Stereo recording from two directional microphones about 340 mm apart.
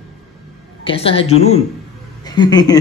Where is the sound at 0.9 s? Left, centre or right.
Centre.